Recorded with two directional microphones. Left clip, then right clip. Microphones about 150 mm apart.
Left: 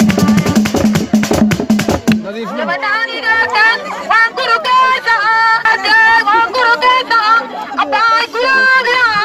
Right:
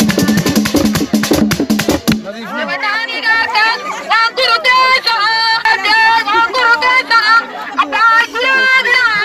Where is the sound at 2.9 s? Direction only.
35° right (ahead or behind).